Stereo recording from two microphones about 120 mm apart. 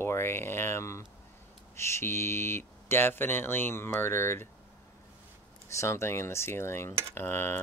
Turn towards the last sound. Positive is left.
turn(degrees=20)  # may be behind; listen again after turning